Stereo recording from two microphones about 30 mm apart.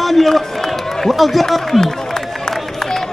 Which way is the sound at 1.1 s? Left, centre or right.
Centre.